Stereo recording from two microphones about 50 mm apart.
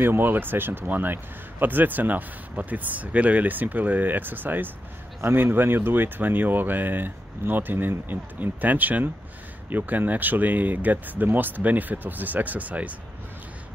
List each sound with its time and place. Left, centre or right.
0.0 s speech: right